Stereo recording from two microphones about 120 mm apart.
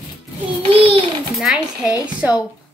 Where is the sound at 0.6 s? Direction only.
50° right (ahead or behind).